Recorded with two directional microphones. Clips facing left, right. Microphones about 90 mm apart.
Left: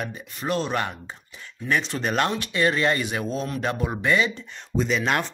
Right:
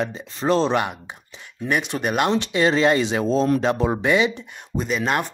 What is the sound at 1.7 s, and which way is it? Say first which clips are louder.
Speech: right 2 dB; 15° right (ahead or behind).